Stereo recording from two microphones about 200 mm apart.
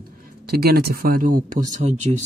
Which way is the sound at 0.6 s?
50° right (ahead or behind).